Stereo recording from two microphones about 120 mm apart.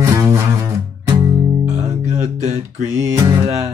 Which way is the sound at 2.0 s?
70° right (ahead or behind).